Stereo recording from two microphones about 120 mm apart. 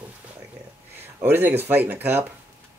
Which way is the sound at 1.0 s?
20° right (ahead or behind).